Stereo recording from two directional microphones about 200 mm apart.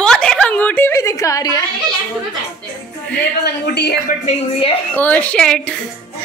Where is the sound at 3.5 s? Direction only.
55° left (ahead or behind).